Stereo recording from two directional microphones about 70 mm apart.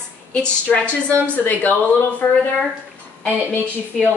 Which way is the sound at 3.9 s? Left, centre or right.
Centre.